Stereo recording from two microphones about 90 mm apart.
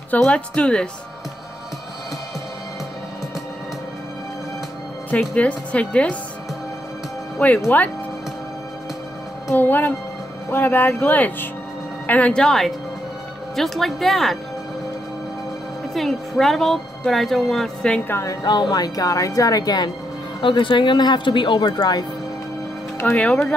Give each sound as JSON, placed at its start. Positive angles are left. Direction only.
{"t": 0.3, "sound": "speech", "side_deg": 10}
{"t": 5.3, "sound": "speech", "side_deg": 15}
{"t": 7.3, "sound": "speech", "side_deg": 15}
{"t": 9.6, "sound": "speech", "side_deg": 20}
{"t": 15.9, "sound": "speech", "side_deg": 0}
{"t": 18.0, "sound": "a woman's voice", "side_deg": 30}
{"t": 18.4, "sound": "speech", "side_deg": 50}
{"t": 20.4, "sound": "speech", "side_deg": 65}
{"t": 22.9, "sound": "speech", "side_deg": 20}